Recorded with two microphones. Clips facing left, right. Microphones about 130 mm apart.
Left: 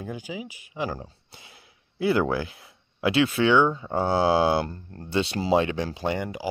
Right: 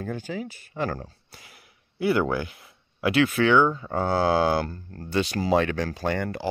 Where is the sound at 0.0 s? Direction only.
10° left (ahead or behind).